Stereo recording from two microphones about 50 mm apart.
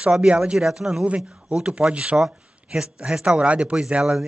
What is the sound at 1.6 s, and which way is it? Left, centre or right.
Speech, right.